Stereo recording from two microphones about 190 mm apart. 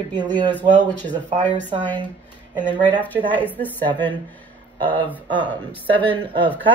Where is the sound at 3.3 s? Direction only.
10° left (ahead or behind).